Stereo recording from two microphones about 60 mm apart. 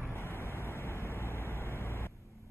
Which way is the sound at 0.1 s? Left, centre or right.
Left.